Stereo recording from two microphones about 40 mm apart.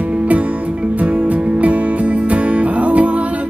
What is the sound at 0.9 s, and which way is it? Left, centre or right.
Music, right.